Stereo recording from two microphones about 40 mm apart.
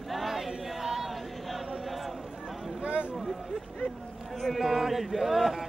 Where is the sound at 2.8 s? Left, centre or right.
Right.